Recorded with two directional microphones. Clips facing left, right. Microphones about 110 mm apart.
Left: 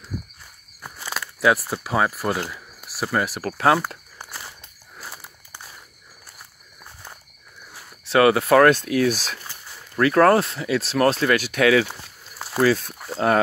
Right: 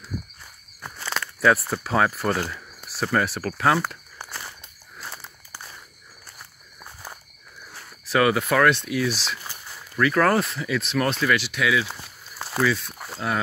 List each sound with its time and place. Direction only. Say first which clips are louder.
0.8 s speech: right 1 dB; 10° left (ahead or behind)
3.4 s speech: left 5 dB; 35° left (ahead or behind)
5.1 s walk: right 1 dB; 15° left (ahead or behind)
8.0 s speech: left 4 dB; 30° left (ahead or behind); by 9.4 s 45° left (ahead or behind)
9.9 s speech: left 4 dB; 35° left (ahead or behind); by 11.9 s 60° left (ahead or behind)
12.5 s speech: left 4 dB; 45° left (ahead or behind)